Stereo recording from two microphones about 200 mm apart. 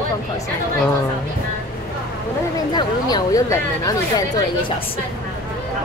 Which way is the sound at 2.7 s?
20° left (ahead or behind).